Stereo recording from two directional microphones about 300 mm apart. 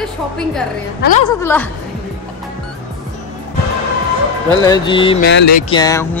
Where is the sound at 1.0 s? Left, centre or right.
Left.